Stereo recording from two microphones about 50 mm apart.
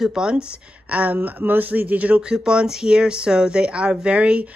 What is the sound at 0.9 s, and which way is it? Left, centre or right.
Speech, right.